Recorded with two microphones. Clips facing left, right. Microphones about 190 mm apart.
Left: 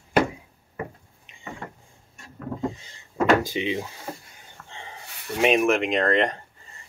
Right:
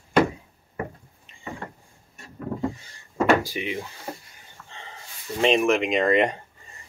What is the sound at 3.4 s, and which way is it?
Speech, 20° left (ahead or behind).